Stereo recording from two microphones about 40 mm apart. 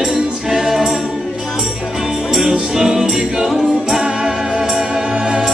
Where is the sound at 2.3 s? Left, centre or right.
Centre.